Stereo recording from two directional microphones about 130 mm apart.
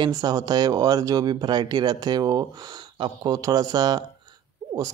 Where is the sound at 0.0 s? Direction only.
30° right (ahead or behind).